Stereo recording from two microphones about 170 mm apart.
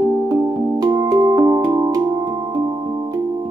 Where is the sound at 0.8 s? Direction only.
20° right (ahead or behind).